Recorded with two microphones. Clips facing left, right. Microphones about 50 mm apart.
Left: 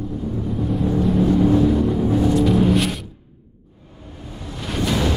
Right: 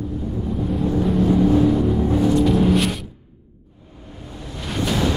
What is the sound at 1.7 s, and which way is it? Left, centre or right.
Music, centre.